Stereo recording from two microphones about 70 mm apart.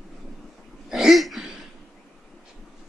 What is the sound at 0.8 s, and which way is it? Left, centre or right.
Throat clearing, centre.